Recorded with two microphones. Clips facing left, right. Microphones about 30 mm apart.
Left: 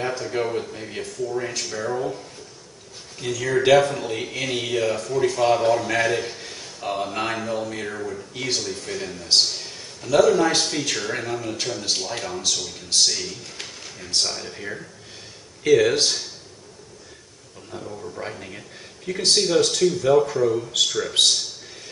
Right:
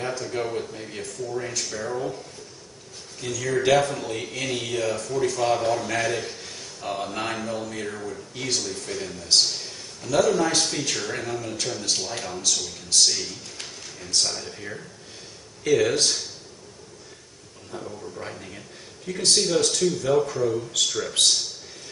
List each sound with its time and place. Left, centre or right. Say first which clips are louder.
0.0 s a man's voice: left 3 dB; centre
13.1 s speech: left 1 dB; centre
13.8 s speech: left 1 dB; centre
17.7 s speech: left 2 dB; centre